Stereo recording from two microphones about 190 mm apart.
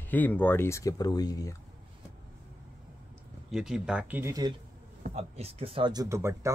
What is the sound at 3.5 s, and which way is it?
Speech, 5° right (ahead or behind).